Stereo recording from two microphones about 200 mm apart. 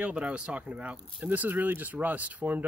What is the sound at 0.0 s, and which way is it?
Speech, 5° right (ahead or behind).